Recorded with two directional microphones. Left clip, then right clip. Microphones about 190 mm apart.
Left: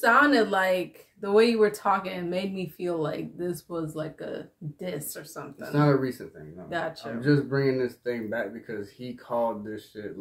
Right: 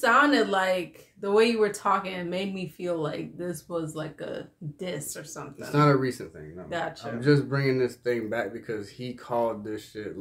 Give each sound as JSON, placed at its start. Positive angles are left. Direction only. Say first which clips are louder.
{"t": 0.0, "sound": "speech", "louder": "left 1 dB", "side_deg": 5}
{"t": 5.7, "sound": "speech", "louder": "right 2 dB", "side_deg": -25}
{"t": 6.7, "sound": "speech", "louder": "left 1 dB", "side_deg": 10}
{"t": 7.2, "sound": "speech", "louder": "right 1 dB", "side_deg": -30}